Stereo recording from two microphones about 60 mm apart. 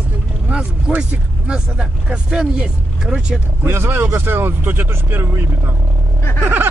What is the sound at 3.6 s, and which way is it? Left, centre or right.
Speech, right.